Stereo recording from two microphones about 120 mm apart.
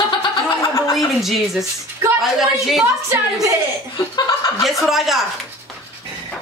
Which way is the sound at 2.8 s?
25° right (ahead or behind).